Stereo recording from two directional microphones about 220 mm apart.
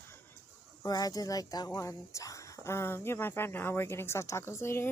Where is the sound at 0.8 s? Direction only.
15° left (ahead or behind).